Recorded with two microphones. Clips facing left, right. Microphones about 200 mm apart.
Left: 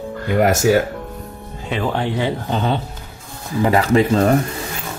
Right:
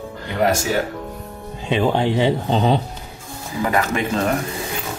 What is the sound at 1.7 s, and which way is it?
Speech, 20° right (ahead or behind).